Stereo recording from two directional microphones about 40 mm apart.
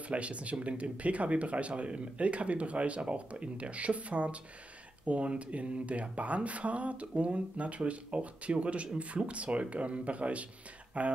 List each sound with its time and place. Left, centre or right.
0.1 s speech: right